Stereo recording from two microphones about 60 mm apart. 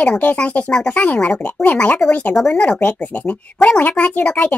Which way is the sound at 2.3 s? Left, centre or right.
Centre.